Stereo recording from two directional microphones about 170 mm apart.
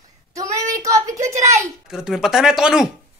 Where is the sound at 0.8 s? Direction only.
20° right (ahead or behind).